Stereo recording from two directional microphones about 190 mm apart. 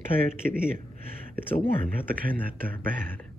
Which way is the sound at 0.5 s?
45° right (ahead or behind).